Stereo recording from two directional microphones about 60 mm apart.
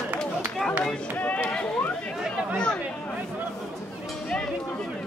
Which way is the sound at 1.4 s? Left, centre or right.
Left.